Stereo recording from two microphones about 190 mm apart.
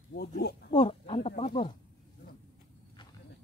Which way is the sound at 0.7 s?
30° left (ahead or behind).